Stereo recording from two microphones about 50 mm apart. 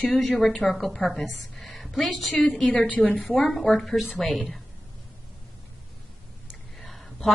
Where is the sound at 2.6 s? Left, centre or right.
Left.